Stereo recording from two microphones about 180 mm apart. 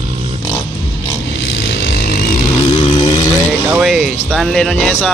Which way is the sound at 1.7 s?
60° left (ahead or behind).